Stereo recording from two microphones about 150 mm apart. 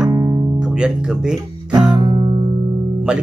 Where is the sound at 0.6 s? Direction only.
5° right (ahead or behind).